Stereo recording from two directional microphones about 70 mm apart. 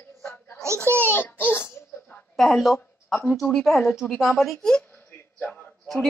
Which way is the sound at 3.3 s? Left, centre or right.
Centre.